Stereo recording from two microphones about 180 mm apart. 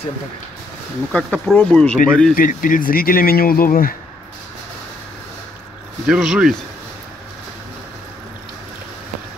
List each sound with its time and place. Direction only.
1.1 s speech: 5° left (ahead or behind)
2.3 s speech: 50° left (ahead or behind)
6.0 s speech: 5° right (ahead or behind)